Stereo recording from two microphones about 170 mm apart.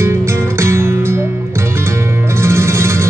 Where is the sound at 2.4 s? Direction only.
15° right (ahead or behind).